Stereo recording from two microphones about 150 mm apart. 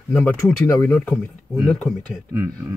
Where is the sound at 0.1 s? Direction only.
10° left (ahead or behind).